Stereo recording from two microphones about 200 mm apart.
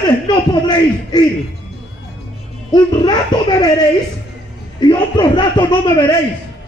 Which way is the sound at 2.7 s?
20° left (ahead or behind).